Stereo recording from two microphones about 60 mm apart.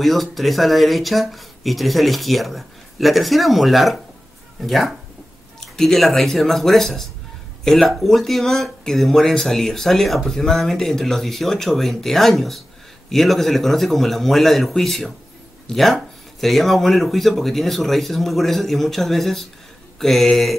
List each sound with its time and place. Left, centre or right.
0.0 s speech: centre